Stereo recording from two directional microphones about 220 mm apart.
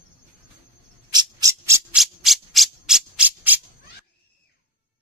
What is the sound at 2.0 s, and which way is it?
Rub, centre (ahead or behind).